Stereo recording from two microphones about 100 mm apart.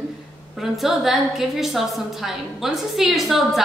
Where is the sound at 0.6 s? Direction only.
Centre (ahead or behind).